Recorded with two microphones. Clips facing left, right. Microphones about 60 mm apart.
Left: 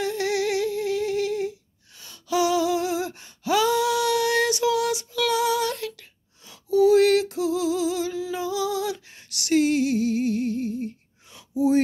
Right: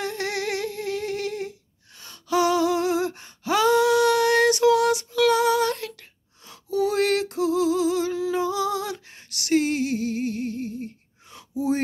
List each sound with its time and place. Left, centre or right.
0.0 s humming: right
2.0 s gasp: right
8.2 s female singing: right